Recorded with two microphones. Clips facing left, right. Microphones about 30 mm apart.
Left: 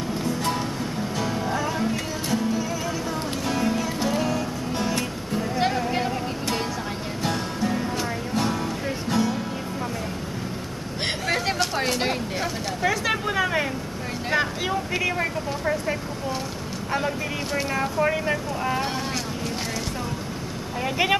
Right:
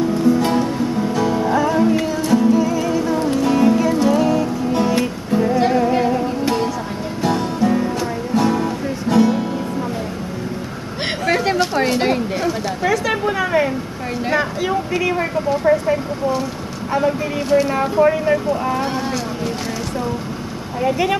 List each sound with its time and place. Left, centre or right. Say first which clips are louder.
0.2 s music: right 9 dB; centre
5.7 s music: right 9 dB; centre
11.2 s a sound: right 8 dB; centre
14.3 s speech: right 4 dB; centre
15.5 s speech: right 14 dB; centre
15.9 s speech: right 9 dB; centre
17.7 s speech: right 8 dB; right
18.0 s speech: right 8 dB; centre